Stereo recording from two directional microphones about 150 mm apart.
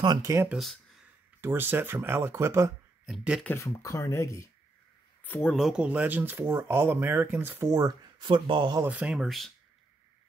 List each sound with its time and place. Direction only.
0.0 s speech: 25° right (ahead or behind)
0.5 s speech: centre (ahead or behind)
1.4 s speech: 15° right (ahead or behind)
3.1 s speech: centre (ahead or behind)
3.4 s speech: 20° left (ahead or behind)
5.6 s speech: 5° right (ahead or behind); by 8.8 s 30° right (ahead or behind)
8.8 s speech: 10° right (ahead or behind)